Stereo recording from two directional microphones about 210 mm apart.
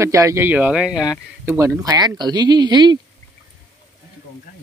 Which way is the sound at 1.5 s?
15° right (ahead or behind).